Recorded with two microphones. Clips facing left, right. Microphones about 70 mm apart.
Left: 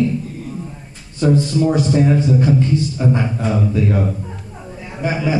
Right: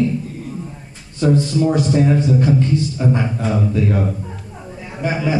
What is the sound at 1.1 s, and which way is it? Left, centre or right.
A man's voice, centre.